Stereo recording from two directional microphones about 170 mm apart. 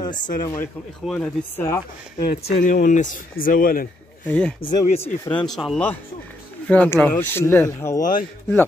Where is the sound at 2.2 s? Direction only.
60° left (ahead or behind).